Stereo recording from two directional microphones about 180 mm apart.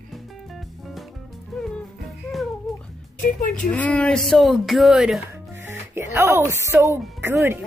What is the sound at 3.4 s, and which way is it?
Speech, 45° left (ahead or behind).